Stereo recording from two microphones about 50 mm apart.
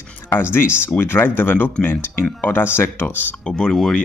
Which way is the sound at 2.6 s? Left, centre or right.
Left.